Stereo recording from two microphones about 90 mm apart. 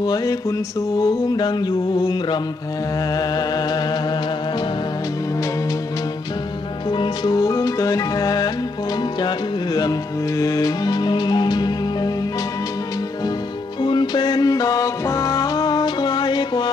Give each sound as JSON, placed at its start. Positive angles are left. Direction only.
{"t": 0.0, "sound": "mantra", "side_deg": 45}
{"t": 6.9, "sound": "music", "side_deg": 55}
{"t": 10.4, "sound": "music", "side_deg": 45}
{"t": 13.8, "sound": "music", "side_deg": 60}